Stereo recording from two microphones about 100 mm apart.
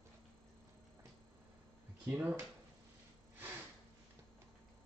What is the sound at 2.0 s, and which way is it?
Speech, 20° right (ahead or behind).